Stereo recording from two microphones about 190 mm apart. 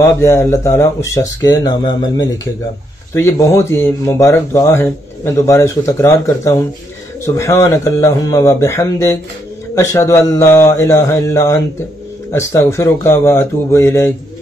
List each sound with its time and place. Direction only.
0.0 s speech: 15° left (ahead or behind)